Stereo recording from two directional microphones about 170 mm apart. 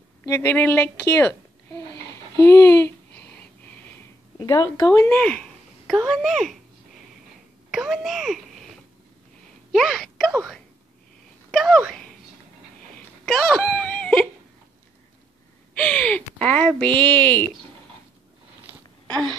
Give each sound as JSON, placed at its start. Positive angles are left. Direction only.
{"t": 0.3, "sound": "a woman's voice", "side_deg": 10}
{"t": 4.4, "sound": "a child's voice", "side_deg": 20}
{"t": 7.7, "sound": "a child's voice", "side_deg": -5}
{"t": 11.5, "sound": "a sound", "side_deg": 0}
{"t": 12.9, "sound": "wail", "side_deg": 5}
{"t": 15.7, "sound": "a woman's voice", "side_deg": 5}
{"t": 19.0, "sound": "a sound", "side_deg": 5}